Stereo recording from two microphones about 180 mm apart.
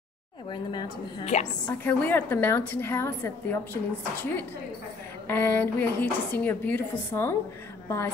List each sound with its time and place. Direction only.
0.5 s a woman's voice: 25° left (ahead or behind)
1.2 s a woman's voice: 40° left (ahead or behind)
1.7 s a woman's voice: 10° left (ahead or behind)